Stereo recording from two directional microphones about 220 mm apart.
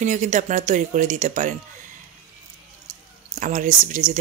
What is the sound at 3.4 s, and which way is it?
Speech, 35° right (ahead or behind).